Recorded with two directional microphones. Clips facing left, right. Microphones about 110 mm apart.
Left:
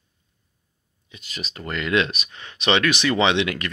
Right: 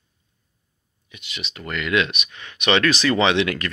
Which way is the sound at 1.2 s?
40° left (ahead or behind).